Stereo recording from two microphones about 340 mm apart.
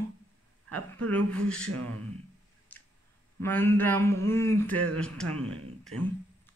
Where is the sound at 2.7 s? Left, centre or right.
Centre.